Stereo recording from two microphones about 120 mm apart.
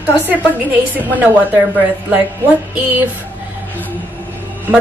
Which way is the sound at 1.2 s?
15° right (ahead or behind).